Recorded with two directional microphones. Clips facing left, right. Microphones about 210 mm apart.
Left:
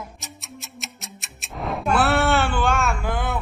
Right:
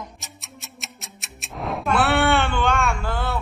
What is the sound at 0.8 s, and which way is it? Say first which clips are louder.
Music: left 3 dB; centre (ahead or behind).